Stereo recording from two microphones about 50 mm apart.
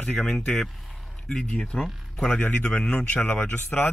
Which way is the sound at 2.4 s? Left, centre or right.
Left.